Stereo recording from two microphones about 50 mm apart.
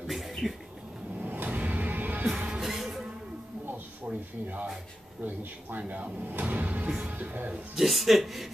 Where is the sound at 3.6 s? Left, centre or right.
Right.